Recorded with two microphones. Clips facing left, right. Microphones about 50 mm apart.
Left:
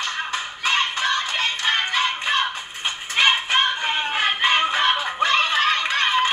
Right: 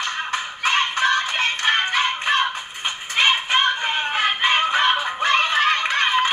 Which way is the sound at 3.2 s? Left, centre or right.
Centre.